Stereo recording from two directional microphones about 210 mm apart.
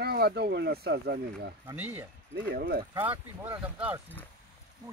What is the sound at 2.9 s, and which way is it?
Speech, 10° right (ahead or behind).